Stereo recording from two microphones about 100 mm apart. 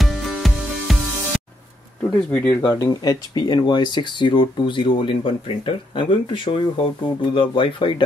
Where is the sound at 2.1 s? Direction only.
15° left (ahead or behind).